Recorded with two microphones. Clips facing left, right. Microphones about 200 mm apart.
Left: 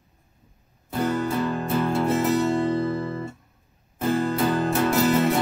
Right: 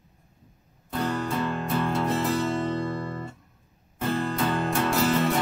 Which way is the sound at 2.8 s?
5° left (ahead or behind).